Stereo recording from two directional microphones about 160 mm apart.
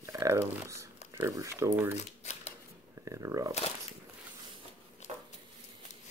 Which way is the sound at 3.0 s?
20° right (ahead or behind).